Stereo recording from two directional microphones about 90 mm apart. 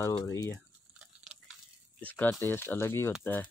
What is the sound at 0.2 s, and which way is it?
Speech, 45° left (ahead or behind).